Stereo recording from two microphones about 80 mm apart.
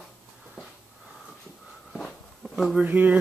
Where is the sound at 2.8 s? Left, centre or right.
Right.